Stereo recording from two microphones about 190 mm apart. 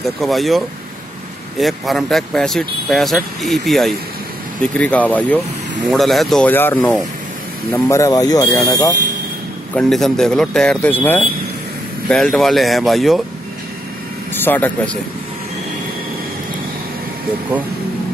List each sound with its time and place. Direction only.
0.0 s speech: centre (ahead or behind)
7.7 s speech: 15° left (ahead or behind)
9.8 s speech: centre (ahead or behind)
14.3 s speech: 10° left (ahead or behind)